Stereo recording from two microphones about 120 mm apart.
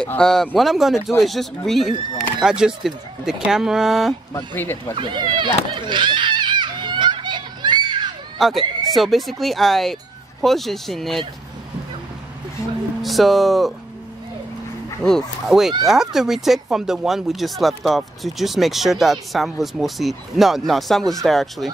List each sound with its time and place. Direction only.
0.0 s speech: 5° left (ahead or behind)
4.6 s speech: 15° left (ahead or behind)
4.9 s speech: 40° right (ahead or behind)
5.8 s children playing: 40° right (ahead or behind)
8.4 s speech: centre (ahead or behind)
13.0 s speech: centre (ahead or behind)
15.0 s speech: centre (ahead or behind)